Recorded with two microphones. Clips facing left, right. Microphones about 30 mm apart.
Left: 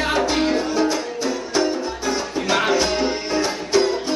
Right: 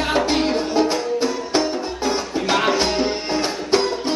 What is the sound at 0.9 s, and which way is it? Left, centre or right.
Music, right.